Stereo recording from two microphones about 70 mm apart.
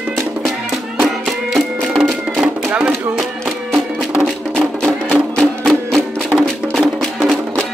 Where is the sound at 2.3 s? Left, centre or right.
Centre.